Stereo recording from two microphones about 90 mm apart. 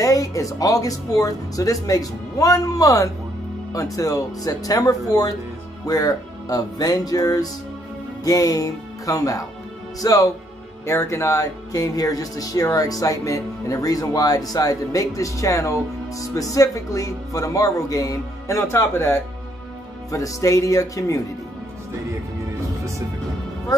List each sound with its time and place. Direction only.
0.0 s speech: 40° left (ahead or behind)
23.7 s speech: 45° left (ahead or behind)